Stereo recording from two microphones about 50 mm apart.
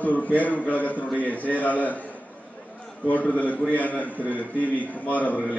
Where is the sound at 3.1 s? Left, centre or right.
Left.